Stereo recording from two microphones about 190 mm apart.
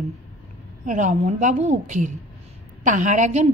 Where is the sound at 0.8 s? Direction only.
40° right (ahead or behind).